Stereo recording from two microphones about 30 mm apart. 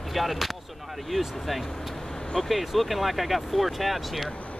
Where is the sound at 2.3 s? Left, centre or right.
Centre.